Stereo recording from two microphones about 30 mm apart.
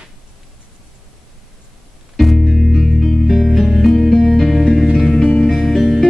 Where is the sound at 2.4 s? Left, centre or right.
Centre.